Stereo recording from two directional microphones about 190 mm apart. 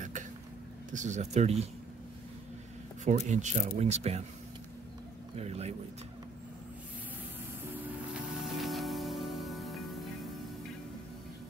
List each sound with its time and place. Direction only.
0.9 s speech: 40° right (ahead or behind)
3.1 s speech: 40° right (ahead or behind)
5.3 s speech: 35° right (ahead or behind)
8.1 s music: centre (ahead or behind)